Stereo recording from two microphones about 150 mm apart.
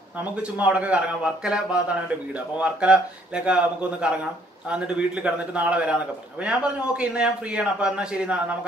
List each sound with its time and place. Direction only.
0.2 s a man's voice: 10° right (ahead or behind)